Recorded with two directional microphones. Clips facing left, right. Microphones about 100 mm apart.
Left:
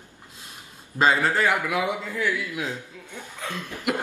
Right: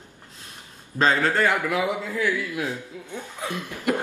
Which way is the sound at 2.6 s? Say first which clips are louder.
Right 2 dB; 20° right (ahead or behind).